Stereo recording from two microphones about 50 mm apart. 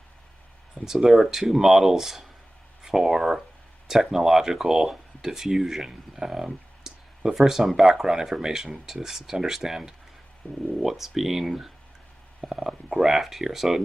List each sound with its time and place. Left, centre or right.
0.8 s speech: centre
10.4 s speech: left
10.8 s speech: centre